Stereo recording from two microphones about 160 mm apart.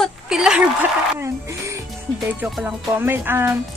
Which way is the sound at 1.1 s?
20° right (ahead or behind).